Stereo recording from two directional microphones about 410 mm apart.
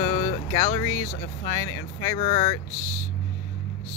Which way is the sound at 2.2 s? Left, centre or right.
Centre.